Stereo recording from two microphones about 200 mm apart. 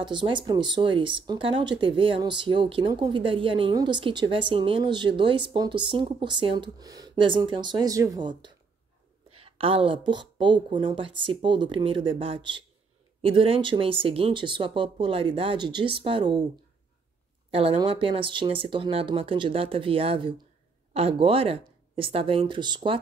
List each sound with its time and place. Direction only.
0.0 s speech: 25° right (ahead or behind)
17.5 s speech: 30° right (ahead or behind)